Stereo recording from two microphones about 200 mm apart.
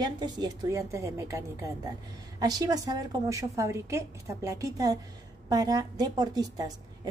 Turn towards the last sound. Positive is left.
turn(degrees=-20)  # may be behind; listen again after turning